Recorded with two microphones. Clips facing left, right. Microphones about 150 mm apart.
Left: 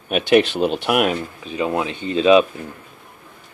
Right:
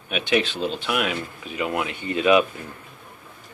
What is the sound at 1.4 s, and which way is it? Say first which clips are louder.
Speech: left 4 dB; 25° left (ahead or behind).